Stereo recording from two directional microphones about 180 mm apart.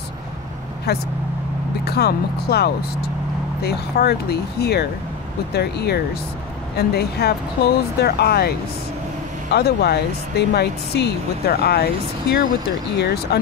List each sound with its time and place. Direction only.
0.9 s speech: 60° left (ahead or behind)